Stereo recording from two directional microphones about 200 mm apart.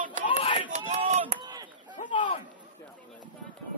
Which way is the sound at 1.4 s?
20° right (ahead or behind).